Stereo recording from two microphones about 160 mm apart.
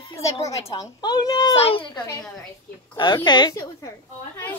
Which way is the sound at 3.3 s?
25° left (ahead or behind).